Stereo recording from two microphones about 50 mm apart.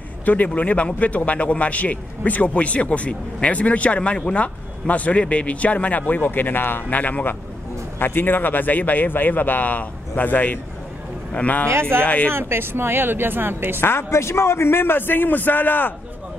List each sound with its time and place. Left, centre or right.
0.2 s a man's voice: left
8.0 s a man's voice: left
11.7 s speech: right
12.0 s a man's voice: left
12.3 s speech: right
13.7 s a man's voice: left